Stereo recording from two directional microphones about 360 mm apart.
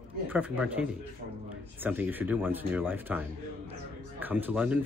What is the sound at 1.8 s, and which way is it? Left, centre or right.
Speech, centre.